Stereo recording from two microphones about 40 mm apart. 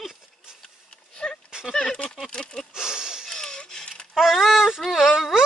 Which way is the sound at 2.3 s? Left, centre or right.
Left.